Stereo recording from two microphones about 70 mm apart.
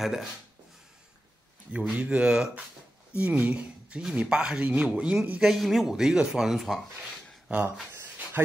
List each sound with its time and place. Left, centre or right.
0.0 s speech: centre
1.7 s speech: centre
3.2 s speech: right
5.4 s speech: centre
7.4 s speech: right